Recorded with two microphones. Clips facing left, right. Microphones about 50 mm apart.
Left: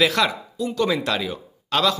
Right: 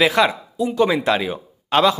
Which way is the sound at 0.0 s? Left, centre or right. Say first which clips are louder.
Right 3 dB; centre.